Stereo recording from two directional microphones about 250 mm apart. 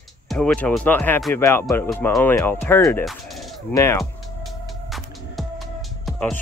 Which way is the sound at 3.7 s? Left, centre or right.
Centre.